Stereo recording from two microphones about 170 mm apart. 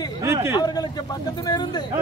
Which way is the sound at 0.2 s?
15° right (ahead or behind).